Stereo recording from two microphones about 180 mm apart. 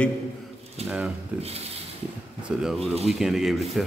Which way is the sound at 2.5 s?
5° right (ahead or behind).